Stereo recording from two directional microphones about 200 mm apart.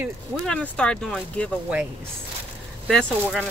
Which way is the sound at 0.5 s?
5° left (ahead or behind).